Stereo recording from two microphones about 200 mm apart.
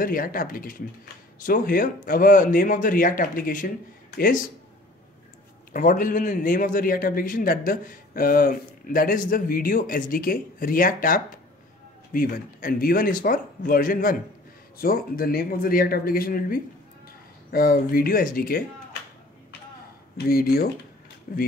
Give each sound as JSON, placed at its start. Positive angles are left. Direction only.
{"t": 0.0, "sound": "a man's voice", "side_deg": 45}
{"t": 5.7, "sound": "a man's voice", "side_deg": 40}
{"t": 20.2, "sound": "a man's voice", "side_deg": 50}